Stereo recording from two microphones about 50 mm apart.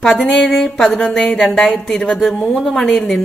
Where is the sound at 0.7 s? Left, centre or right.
Centre.